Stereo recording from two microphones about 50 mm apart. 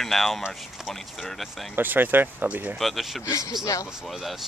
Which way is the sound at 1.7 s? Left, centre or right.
Right.